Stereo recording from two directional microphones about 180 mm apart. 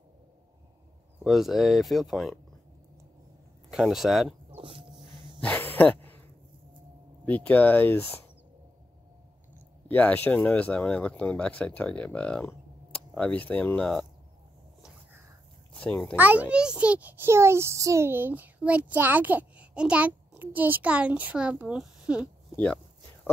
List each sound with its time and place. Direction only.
1.2 s speech: centre (ahead or behind)
3.7 s speech: centre (ahead or behind)
4.6 s dog: 30° right (ahead or behind)
5.4 s a sound: 10° left (ahead or behind)
7.2 s speech: 10° left (ahead or behind)
9.8 s speech: 10° left (ahead or behind)
15.8 s speech: 5° left (ahead or behind)
16.2 s a child's voice: 10° right (ahead or behind)